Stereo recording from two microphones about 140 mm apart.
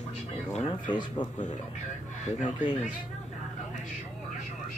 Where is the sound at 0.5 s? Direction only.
35° left (ahead or behind).